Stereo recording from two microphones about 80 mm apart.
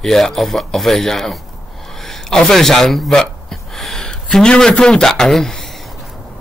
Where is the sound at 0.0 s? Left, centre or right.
Centre.